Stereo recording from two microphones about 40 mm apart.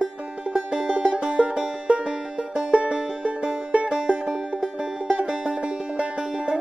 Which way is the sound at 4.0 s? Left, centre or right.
Centre.